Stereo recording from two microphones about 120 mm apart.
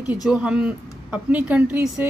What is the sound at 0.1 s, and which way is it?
Speech, 10° right (ahead or behind).